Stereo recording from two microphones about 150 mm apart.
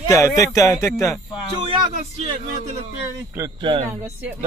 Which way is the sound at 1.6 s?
40° right (ahead or behind).